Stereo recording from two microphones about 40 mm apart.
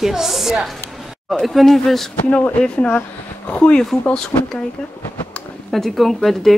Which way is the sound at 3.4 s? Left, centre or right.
Left.